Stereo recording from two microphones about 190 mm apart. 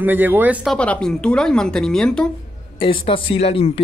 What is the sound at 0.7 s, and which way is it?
Speech, 5° left (ahead or behind).